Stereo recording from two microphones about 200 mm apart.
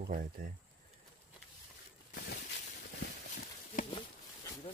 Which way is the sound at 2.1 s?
55° left (ahead or behind).